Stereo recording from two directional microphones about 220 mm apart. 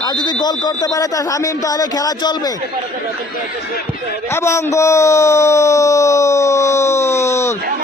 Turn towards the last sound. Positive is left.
turn(degrees=10)  # may be behind; listen again after turning